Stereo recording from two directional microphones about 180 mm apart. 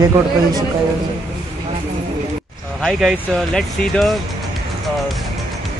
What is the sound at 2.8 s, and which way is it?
Speech, centre (ahead or behind).